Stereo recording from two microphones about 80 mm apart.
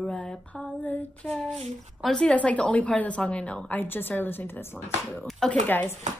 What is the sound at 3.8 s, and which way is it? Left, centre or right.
Speech, left.